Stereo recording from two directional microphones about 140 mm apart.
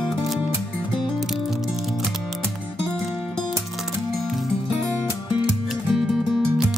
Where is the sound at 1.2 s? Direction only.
Centre (ahead or behind).